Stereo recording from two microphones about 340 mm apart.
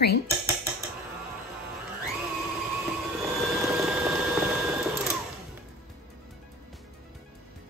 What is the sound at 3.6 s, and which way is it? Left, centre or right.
Sewing machine, centre.